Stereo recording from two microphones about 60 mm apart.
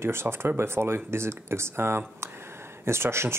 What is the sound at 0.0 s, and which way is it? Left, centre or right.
Speech, right.